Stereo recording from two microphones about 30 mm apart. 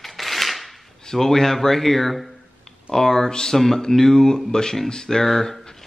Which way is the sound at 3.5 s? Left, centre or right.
Centre.